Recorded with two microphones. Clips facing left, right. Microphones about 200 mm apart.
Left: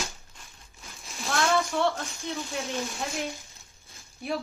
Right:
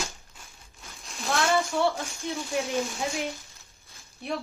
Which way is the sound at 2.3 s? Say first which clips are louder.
Right 4 dB; centre (ahead or behind).